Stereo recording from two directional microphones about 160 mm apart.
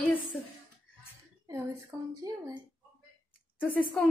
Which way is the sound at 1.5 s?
20° right (ahead or behind).